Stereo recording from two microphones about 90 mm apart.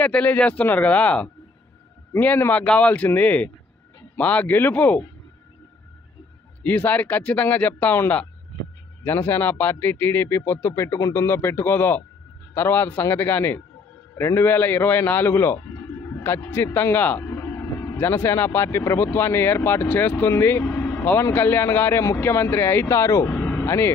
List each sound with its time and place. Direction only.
0.0 s speech: 15° left (ahead or behind)
6.6 s a man's voice: 20° left (ahead or behind)
20.6 s vehicle: 10° left (ahead or behind)
21.2 s speech: 25° left (ahead or behind)
23.3 s vehicle: 5° left (ahead or behind)
23.6 s speech: 30° left (ahead or behind)